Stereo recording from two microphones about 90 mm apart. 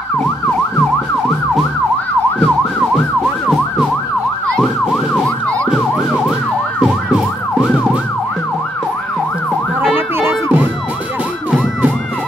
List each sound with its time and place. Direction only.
0.2 s emergency vehicle: 10° left (ahead or behind)
3.4 s emergency vehicle: 5° right (ahead or behind)
9.9 s ambulance: 20° right (ahead or behind)